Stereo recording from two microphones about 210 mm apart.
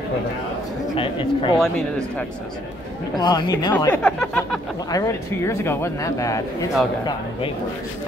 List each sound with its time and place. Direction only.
0.9 s speech: 25° left (ahead or behind)
1.6 s speech: 5° left (ahead or behind)
3.2 s speech: 20° left (ahead or behind)